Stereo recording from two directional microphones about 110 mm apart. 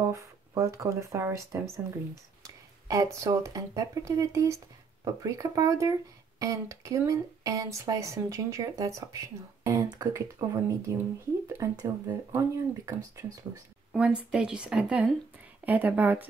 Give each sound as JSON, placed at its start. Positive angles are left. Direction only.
{"t": 0.1, "sound": "speech", "side_deg": -30}
{"t": 13.9, "sound": "speech", "side_deg": -10}